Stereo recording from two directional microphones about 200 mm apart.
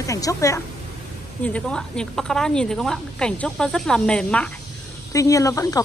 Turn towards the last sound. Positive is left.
turn(degrees=15)  # may be behind; listen again after turning